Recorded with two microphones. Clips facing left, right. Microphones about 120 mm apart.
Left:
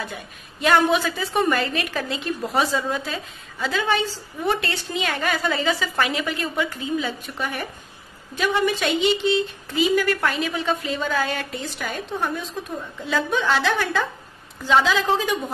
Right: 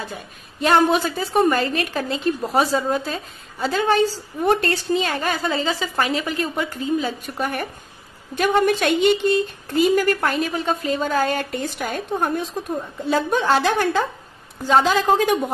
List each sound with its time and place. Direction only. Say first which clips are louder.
0.0 s a woman's voice: even; 35° right (ahead or behind)